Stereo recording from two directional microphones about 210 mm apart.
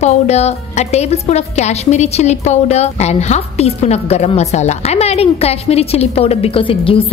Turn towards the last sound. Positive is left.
turn(degrees=25)  # may be behind; listen again after turning